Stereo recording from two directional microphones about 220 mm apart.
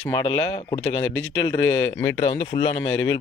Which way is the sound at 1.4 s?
15° left (ahead or behind).